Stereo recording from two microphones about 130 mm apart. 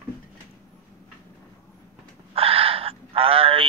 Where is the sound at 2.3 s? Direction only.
50° right (ahead or behind).